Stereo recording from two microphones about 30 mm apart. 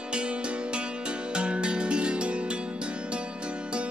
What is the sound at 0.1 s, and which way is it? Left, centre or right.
Music, right.